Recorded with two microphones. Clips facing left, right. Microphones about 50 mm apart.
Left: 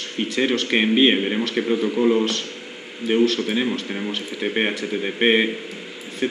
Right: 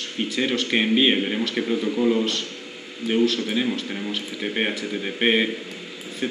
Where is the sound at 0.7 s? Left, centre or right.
Centre.